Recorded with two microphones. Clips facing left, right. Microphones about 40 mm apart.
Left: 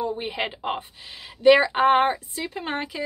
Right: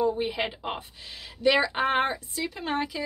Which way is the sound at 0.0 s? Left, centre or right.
Left.